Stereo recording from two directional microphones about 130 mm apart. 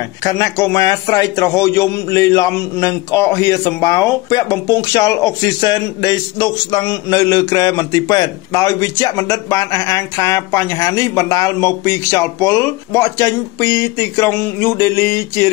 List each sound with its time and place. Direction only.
0.2 s a man's voice: 25° left (ahead or behind)